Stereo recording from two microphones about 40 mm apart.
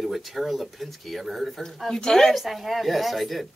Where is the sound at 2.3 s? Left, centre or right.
Centre.